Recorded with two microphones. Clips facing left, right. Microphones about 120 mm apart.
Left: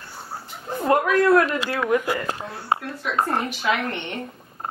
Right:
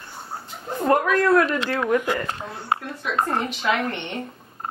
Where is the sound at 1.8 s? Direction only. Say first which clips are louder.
Even; 5° left (ahead or behind).